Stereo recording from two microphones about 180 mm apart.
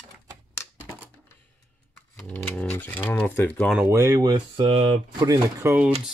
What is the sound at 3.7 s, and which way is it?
Speech, 15° right (ahead or behind).